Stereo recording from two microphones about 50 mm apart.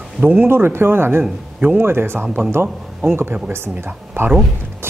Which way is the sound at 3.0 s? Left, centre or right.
Right.